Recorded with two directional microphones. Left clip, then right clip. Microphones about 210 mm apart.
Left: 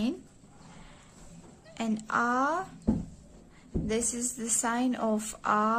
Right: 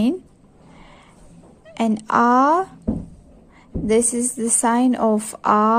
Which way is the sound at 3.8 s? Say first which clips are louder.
Right 14 dB; 30° right (ahead or behind).